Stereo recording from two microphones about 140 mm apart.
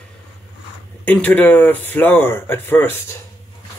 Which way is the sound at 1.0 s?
15° left (ahead or behind).